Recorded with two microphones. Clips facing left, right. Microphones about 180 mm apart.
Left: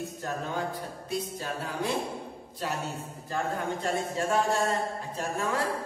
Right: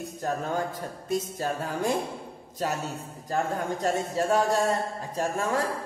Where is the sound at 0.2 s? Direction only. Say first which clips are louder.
Right 5 dB; 45° right (ahead or behind).